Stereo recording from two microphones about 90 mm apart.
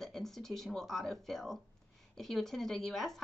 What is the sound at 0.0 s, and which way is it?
Speech, 5° left (ahead or behind).